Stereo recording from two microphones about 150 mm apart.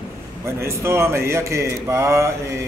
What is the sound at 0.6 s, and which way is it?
Speech, 15° right (ahead or behind).